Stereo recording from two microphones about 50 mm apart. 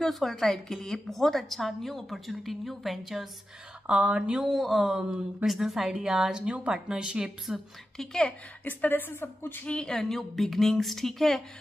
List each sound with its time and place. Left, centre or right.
0.0 s a woman's voice: centre
3.8 s speech: right
4.4 s a woman's voice: centre
7.4 s a woman's voice: centre
8.6 s a woman's voice: left
9.7 s a woman's voice: centre